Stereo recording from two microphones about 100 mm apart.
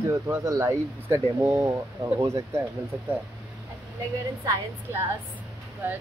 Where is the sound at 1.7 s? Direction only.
35° right (ahead or behind).